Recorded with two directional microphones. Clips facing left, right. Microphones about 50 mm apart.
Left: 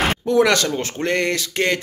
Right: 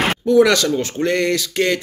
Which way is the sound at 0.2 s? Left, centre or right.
Left.